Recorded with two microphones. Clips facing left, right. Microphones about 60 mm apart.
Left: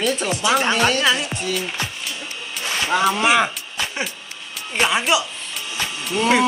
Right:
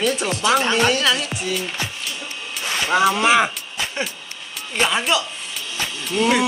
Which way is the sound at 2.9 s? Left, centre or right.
Centre.